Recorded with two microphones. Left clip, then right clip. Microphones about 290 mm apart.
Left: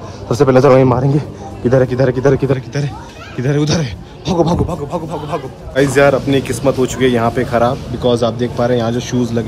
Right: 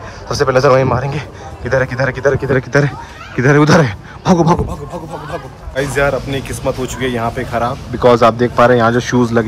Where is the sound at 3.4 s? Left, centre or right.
Centre.